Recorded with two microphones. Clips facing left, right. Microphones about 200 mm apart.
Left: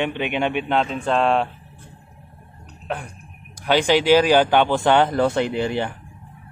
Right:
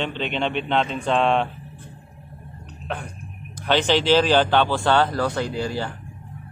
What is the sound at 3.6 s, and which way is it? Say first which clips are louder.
Speech: left 2 dB; 10° left (ahead or behind).